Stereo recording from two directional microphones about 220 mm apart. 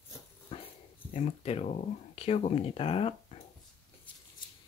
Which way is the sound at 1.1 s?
30° left (ahead or behind).